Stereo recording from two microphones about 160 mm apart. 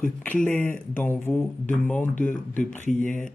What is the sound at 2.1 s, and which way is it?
Speech, 55° left (ahead or behind).